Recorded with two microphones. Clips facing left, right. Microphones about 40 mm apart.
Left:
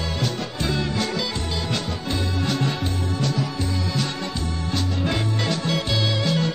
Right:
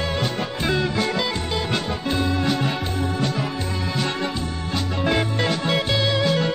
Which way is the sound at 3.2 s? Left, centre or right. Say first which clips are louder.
Right 1 dB; right.